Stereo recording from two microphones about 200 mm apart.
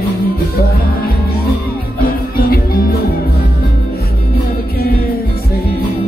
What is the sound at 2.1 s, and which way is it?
Music, 50° left (ahead or behind).